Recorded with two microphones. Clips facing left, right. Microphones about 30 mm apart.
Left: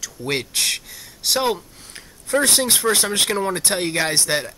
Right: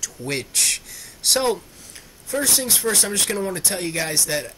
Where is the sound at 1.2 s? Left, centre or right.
Centre.